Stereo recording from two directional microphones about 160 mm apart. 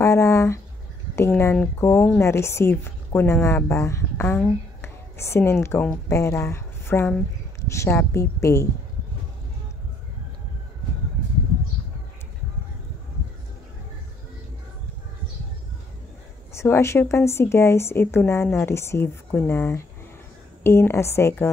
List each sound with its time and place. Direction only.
0.0 s a sound: 15° left (ahead or behind)
1.1 s a woman's voice: 15° left (ahead or behind)
16.5 s a woman's voice: 15° left (ahead or behind)